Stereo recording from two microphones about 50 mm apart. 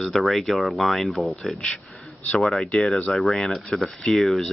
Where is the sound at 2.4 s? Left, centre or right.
Centre.